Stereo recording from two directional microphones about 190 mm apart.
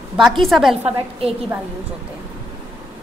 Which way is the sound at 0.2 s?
Centre (ahead or behind).